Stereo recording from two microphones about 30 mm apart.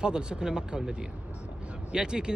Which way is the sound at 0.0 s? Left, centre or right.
Right.